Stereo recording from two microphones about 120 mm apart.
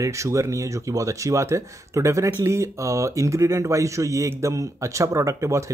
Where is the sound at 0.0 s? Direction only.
25° right (ahead or behind).